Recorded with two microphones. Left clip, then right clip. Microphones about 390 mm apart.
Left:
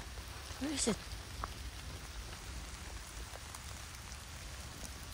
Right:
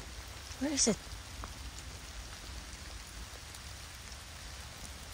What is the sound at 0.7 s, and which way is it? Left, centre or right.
Speech, centre.